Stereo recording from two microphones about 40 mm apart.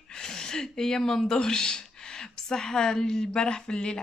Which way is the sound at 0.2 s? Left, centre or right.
Centre.